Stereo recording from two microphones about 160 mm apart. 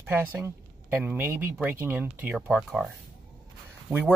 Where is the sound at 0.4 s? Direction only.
15° right (ahead or behind).